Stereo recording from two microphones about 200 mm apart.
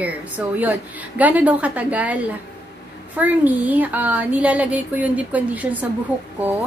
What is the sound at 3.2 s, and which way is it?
Speech, 10° right (ahead or behind).